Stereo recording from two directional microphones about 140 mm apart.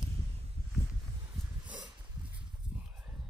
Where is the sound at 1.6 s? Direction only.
10° right (ahead or behind).